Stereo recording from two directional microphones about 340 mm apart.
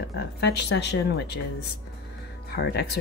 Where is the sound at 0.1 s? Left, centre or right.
Left.